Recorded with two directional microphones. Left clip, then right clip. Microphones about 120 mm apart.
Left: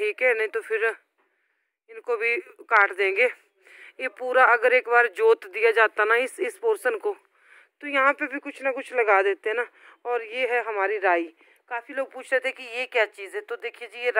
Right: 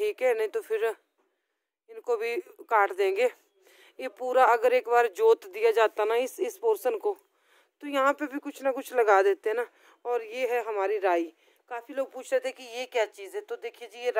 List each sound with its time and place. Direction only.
0.0 s a woman's voice: 35° right (ahead or behind); by 7.0 s 20° right (ahead or behind)
7.4 s speech: 40° right (ahead or behind)
9.4 s speech: 30° right (ahead or behind); by 14.1 s 10° right (ahead or behind)